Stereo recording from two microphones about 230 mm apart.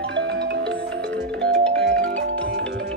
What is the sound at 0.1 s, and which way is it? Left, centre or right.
Music, right.